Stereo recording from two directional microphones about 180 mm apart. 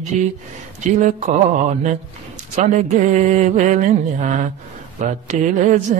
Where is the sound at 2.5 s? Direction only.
40° right (ahead or behind).